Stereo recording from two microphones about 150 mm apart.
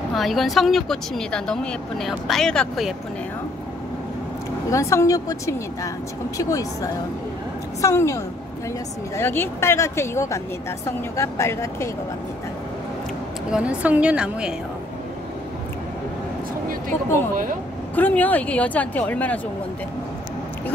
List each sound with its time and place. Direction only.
0.1 s speech: centre (ahead or behind)
4.6 s a woman's voice: 20° left (ahead or behind)
13.5 s a woman's voice: 5° right (ahead or behind)
17.9 s speech: 10° left (ahead or behind)